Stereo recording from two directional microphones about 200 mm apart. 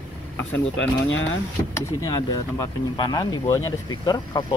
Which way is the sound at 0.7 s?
75° left (ahead or behind).